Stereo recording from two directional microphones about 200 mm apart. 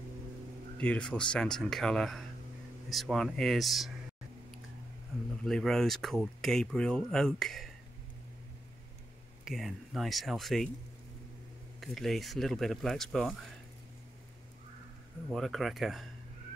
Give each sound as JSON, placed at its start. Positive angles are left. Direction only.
{"t": 0.7, "sound": "speech", "side_deg": 5}
{"t": 5.4, "sound": "speech", "side_deg": 0}
{"t": 9.4, "sound": "speech", "side_deg": 0}
{"t": 11.8, "sound": "speech", "side_deg": 0}
{"t": 15.3, "sound": "speech", "side_deg": 0}